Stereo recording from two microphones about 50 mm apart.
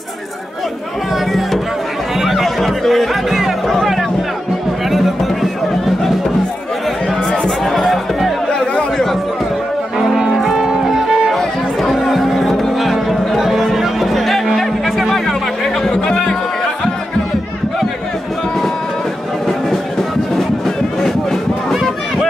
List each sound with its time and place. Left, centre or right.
1.1 s music: centre
4.8 s music: centre
7.6 s music: centre
8.5 s a sound: centre
10.3 s music: centre
11.3 s music: centre
15.9 s music: centre
20.3 s music: centre